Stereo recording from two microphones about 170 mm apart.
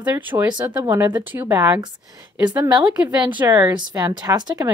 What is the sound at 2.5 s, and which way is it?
Speech, 25° right (ahead or behind).